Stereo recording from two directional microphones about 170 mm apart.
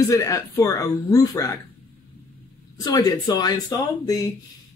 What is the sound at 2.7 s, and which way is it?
Speech, 20° left (ahead or behind).